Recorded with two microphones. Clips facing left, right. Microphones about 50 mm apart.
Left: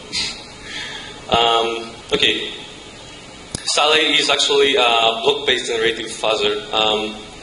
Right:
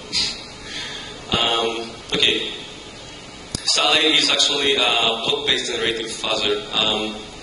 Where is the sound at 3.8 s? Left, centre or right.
Centre.